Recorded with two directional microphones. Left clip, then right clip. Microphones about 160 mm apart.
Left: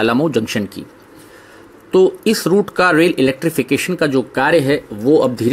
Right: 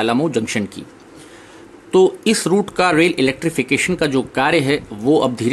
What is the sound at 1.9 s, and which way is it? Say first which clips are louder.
Speech: left 1 dB; 5° left (ahead or behind).